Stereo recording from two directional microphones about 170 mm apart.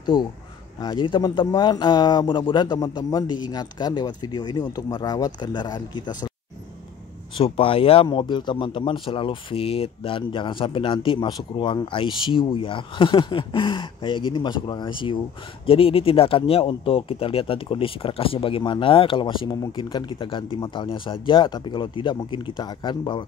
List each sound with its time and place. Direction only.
0.0 s speech: 25° left (ahead or behind)
7.3 s speech: 30° left (ahead or behind)